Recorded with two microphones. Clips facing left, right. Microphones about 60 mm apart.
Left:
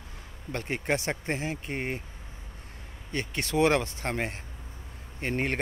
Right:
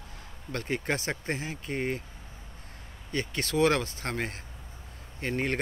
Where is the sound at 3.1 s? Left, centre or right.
Left.